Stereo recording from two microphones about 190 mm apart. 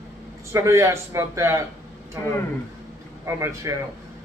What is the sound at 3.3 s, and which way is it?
Speech, 15° right (ahead or behind).